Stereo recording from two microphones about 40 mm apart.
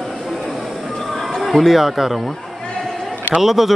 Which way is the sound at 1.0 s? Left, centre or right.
Centre.